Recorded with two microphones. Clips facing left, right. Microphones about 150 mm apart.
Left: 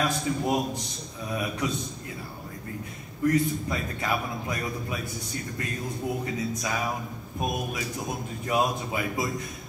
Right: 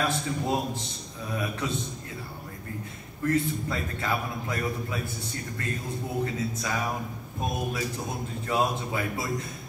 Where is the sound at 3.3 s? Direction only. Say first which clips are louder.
Left 2 dB; 15° left (ahead or behind).